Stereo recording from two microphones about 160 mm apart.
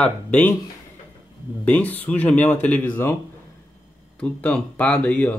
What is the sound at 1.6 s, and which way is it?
Speech, 10° left (ahead or behind).